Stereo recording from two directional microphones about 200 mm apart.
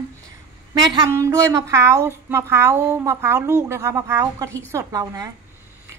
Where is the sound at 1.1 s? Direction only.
15° right (ahead or behind).